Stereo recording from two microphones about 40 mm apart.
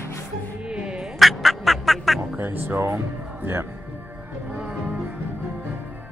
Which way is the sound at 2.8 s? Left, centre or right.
Right.